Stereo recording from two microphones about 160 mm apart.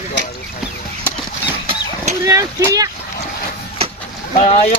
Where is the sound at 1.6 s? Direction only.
40° right (ahead or behind).